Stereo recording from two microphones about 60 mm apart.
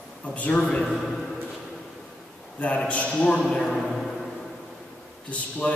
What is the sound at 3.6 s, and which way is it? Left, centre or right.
Speech, centre.